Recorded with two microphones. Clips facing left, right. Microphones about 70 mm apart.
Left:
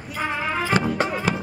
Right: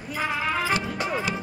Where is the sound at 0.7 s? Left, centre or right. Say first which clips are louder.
Left 5 dB; left.